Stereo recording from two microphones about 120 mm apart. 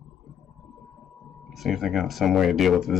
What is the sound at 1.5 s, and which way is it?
Speech, centre (ahead or behind).